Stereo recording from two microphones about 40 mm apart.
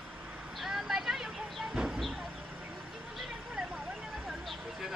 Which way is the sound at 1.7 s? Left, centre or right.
Centre.